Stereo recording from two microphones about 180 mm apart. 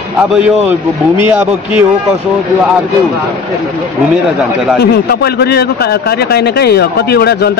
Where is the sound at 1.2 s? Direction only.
10° right (ahead or behind).